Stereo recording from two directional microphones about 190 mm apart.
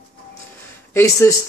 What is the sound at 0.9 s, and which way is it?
Speech, 15° left (ahead or behind).